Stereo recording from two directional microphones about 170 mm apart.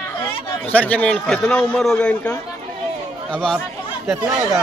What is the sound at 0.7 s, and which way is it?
Speech, 10° left (ahead or behind).